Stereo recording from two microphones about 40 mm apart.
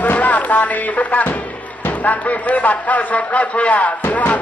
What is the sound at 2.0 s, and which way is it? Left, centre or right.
A man's voice, left.